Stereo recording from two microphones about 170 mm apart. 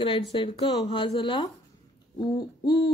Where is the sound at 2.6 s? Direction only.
25° left (ahead or behind).